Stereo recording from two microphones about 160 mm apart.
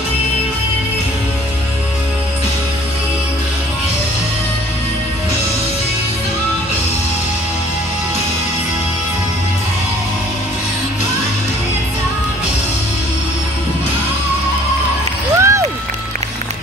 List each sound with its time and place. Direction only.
15.3 s music: 20° right (ahead or behind)